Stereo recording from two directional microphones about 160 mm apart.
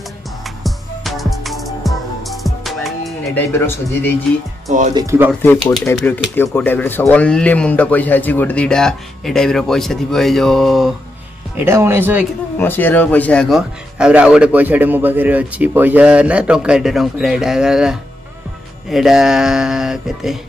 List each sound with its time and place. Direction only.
0.7 s music: centre (ahead or behind)
3.3 s speech: 15° left (ahead or behind)
4.6 s speech: 50° right (ahead or behind)
4.9 s speech: 15° right (ahead or behind)
5.4 s speech: 10° left (ahead or behind)
11.5 s speech: 15° right (ahead or behind)
12.5 s speech: 10° left (ahead or behind); by 20.3 s 5° right (ahead or behind)